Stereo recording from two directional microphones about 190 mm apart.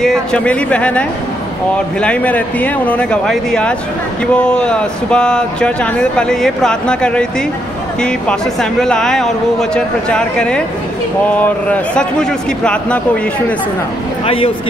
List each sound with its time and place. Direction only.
0.0 s a man's voice: 5° left (ahead or behind)
14.2 s speech: 30° left (ahead or behind)